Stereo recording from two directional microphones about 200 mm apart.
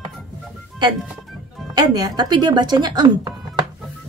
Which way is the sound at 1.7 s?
20° right (ahead or behind).